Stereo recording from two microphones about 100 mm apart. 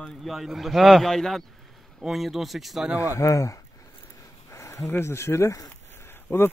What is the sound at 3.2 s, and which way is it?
Speech, 30° left (ahead or behind).